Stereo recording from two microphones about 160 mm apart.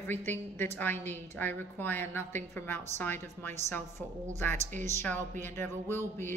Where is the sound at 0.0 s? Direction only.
15° left (ahead or behind).